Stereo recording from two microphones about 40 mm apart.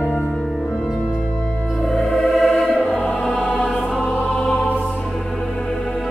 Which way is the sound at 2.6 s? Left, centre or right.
Centre.